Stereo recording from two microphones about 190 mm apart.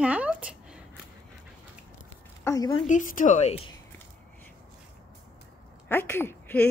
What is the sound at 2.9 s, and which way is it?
Speech, 45° left (ahead or behind).